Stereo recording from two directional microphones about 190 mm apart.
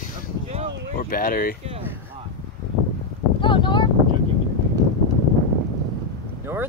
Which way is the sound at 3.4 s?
25° left (ahead or behind).